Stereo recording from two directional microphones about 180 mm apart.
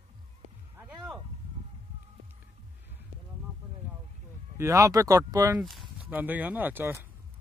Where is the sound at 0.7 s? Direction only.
10° right (ahead or behind).